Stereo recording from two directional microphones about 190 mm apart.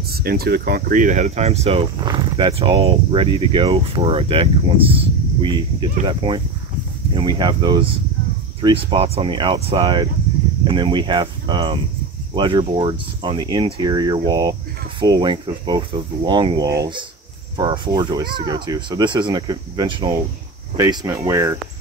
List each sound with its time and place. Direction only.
0.1 s speech: 55° right (ahead or behind); by 21.5 s 15° right (ahead or behind)